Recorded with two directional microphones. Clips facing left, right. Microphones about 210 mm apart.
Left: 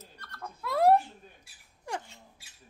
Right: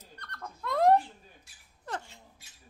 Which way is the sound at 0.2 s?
5° left (ahead or behind).